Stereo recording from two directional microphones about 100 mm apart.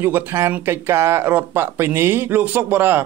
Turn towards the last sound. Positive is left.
turn(degrees=-20)  # may be behind; listen again after turning